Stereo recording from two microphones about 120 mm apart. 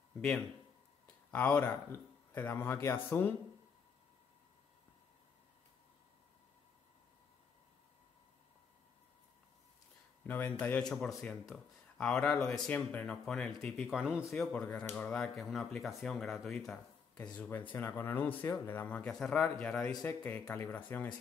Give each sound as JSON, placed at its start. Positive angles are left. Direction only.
{"t": 1.3, "sound": "speech", "side_deg": 10}
{"t": 10.2, "sound": "speech", "side_deg": 15}
{"t": 13.9, "sound": "a man's voice", "side_deg": -5}
{"t": 14.3, "sound": "speech", "side_deg": 5}
{"t": 17.1, "sound": "speech", "side_deg": 15}